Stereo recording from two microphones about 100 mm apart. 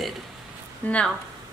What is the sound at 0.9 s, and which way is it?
Speech, 10° left (ahead or behind).